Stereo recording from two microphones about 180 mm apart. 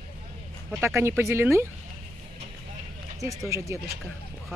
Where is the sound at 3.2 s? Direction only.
15° right (ahead or behind).